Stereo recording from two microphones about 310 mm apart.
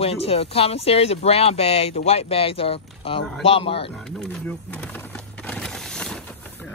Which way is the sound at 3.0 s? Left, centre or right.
Centre.